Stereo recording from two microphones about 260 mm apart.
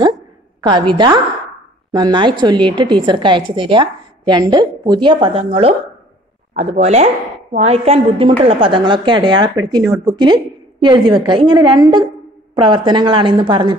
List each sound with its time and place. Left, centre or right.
0.6 s a woman's voice: centre